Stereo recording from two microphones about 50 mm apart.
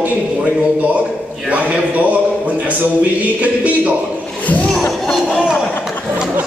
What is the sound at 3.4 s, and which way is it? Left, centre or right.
Speech, right.